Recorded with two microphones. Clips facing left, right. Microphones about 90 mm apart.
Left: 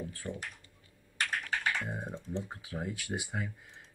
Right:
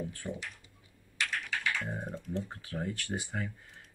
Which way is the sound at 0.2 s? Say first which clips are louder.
Left 1 dB; 10° right (ahead or behind).